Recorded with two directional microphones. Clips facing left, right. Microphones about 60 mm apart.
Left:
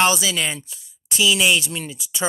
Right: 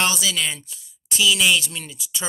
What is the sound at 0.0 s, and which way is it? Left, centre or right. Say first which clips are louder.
Speech: left 4 dB; centre.